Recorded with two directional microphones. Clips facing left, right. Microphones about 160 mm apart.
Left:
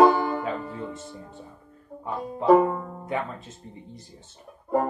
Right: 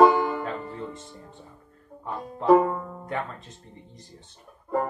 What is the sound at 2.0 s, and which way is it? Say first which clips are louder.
Music: left 3 dB; 5° left (ahead or behind).